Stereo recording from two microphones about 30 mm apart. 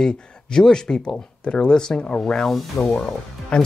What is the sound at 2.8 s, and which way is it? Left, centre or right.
Speech, centre.